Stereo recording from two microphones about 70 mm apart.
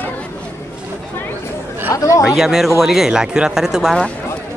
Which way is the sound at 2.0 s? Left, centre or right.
Left.